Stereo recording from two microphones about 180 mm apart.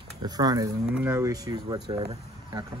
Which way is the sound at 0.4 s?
20° right (ahead or behind).